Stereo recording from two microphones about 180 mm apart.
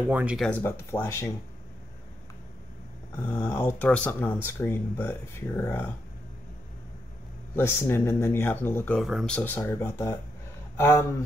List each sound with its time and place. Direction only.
0.1 s speech: 5° right (ahead or behind)
0.5 s speech: 10° left (ahead or behind)
3.3 s speech: 10° left (ahead or behind)
7.5 s speech: 15° left (ahead or behind)